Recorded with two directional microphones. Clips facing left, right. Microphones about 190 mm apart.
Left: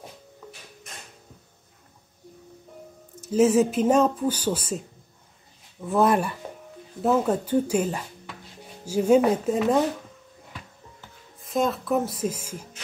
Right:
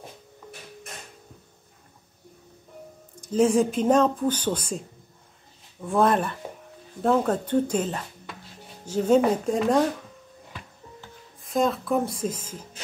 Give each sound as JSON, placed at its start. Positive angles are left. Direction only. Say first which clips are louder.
{"t": 3.2, "sound": "speech", "louder": "left 1 dB", "side_deg": 5}
{"t": 5.9, "sound": "speech", "louder": "left 1 dB", "side_deg": 5}
{"t": 11.4, "sound": "speech", "louder": "right 1 dB", "side_deg": 0}